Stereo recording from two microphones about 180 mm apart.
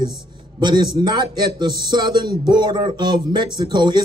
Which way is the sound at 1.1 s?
25° right (ahead or behind).